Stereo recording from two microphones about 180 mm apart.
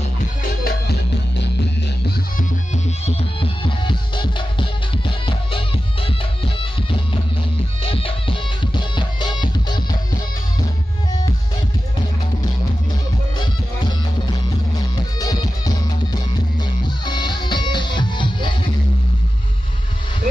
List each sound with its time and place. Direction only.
0.7 s music: 65° left (ahead or behind)
2.7 s music: 35° left (ahead or behind)
15.1 s music: 20° left (ahead or behind)